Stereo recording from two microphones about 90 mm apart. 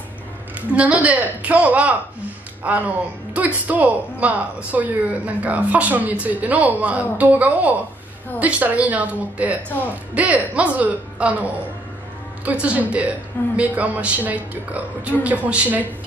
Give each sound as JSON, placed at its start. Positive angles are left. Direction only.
{"t": 0.6, "sound": "a woman's voice", "side_deg": -15}
{"t": 12.4, "sound": "a woman's voice", "side_deg": -15}